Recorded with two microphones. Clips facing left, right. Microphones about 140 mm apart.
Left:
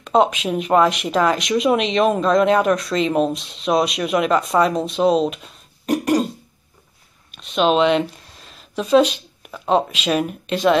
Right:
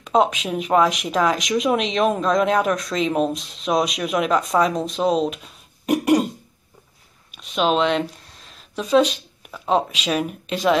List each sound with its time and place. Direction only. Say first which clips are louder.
0.0 s speech: left 2 dB; centre (ahead or behind)
5.9 s throat clearing: right 1 dB; 15° right (ahead or behind)
7.2 s speech: left 3 dB; 5° right (ahead or behind)